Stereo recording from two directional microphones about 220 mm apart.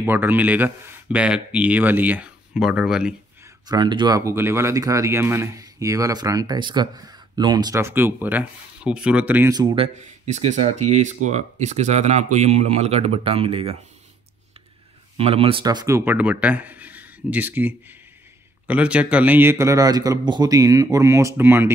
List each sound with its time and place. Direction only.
0.0 s speech: 10° right (ahead or behind)
3.6 s speech: 20° right (ahead or behind)
9.9 s speech: 30° right (ahead or behind)
15.1 s speech: 25° right (ahead or behind); by 21.7 s 10° right (ahead or behind)